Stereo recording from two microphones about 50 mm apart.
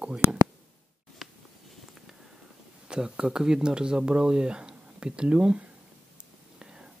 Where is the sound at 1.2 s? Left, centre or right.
Centre.